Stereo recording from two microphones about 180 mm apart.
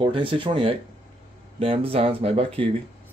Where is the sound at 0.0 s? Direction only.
30° right (ahead or behind).